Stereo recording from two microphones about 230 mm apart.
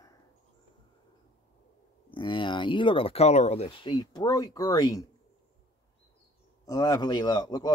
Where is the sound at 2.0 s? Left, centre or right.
Left.